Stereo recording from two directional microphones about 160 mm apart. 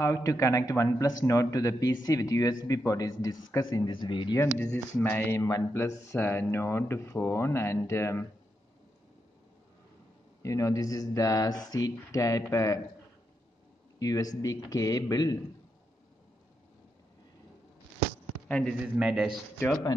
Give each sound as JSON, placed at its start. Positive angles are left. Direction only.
{"t": 0.0, "sound": "a man's voice", "side_deg": 20}
{"t": 4.9, "sound": "speech", "side_deg": 10}
{"t": 10.4, "sound": "a man's voice", "side_deg": 20}
{"t": 13.9, "sound": "a man's voice", "side_deg": 20}
{"t": 18.5, "sound": "a man's voice", "side_deg": 5}